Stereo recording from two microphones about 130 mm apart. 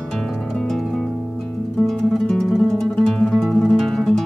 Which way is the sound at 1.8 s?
Centre (ahead or behind).